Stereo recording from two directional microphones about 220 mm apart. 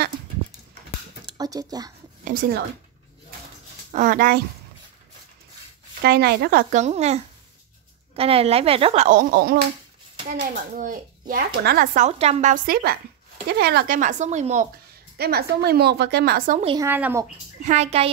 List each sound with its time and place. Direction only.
1.2 s a sound: 15° right (ahead or behind)
2.2 s a woman's voice: 45° right (ahead or behind)
3.9 s speech: 35° right (ahead or behind)
6.0 s speech: 45° right (ahead or behind)
15.1 s a woman's voice: 45° right (ahead or behind)
16.6 s a woman's voice: 15° right (ahead or behind)
17.6 s speech: 30° right (ahead or behind)